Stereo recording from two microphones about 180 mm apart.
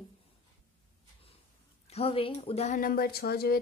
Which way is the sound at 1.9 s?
35° left (ahead or behind).